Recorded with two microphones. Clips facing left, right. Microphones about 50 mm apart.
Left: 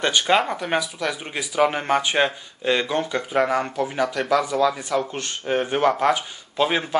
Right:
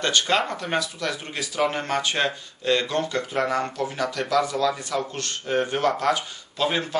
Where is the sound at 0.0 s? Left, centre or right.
Centre.